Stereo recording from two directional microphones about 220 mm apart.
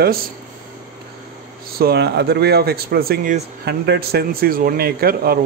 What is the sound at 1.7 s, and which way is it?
Speech, 45° right (ahead or behind).